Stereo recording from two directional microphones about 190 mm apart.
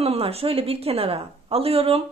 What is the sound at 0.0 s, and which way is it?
A woman's voice, 30° right (ahead or behind).